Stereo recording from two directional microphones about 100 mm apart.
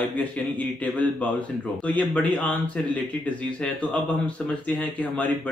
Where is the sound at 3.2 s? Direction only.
10° left (ahead or behind).